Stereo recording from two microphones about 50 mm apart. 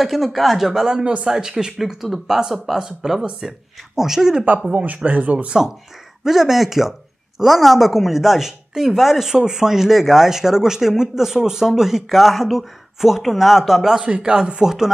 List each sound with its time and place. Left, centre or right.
0.0 s speech: centre
4.6 s speech: right
6.2 s speech: centre
14.0 s speech: centre